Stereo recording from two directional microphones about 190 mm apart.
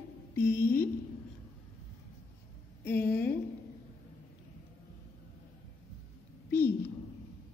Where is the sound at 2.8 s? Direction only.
10° left (ahead or behind).